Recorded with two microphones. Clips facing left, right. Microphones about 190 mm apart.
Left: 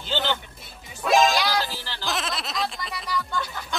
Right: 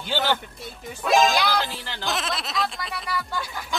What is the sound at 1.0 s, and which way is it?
Speech, centre (ahead or behind).